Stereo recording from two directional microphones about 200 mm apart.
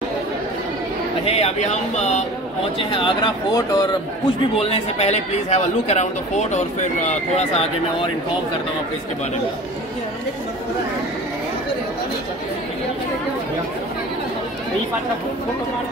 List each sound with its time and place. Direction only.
1.2 s speech: 30° left (ahead or behind)
2.8 s speech: 25° left (ahead or behind)